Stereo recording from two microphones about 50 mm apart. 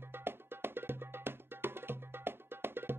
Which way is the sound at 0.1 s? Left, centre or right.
Right.